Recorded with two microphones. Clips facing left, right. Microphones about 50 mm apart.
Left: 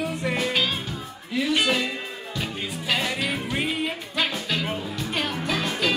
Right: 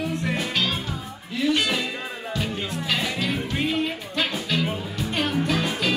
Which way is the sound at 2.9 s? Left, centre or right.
Centre.